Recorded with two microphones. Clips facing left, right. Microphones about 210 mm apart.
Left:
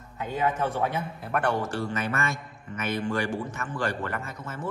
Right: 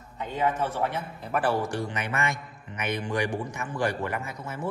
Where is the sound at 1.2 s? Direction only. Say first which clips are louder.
Right 1 dB; centre (ahead or behind).